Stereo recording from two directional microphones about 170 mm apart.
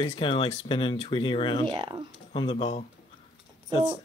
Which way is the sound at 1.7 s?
25° right (ahead or behind).